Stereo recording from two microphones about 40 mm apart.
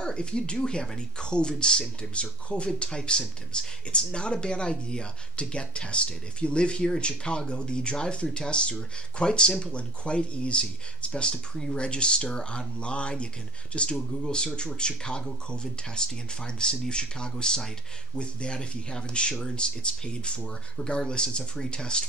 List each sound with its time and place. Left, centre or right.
0.0 s speech: left